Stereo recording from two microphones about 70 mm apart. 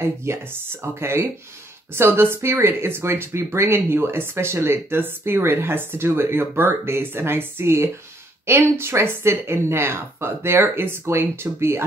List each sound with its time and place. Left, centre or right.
0.3 s speech: right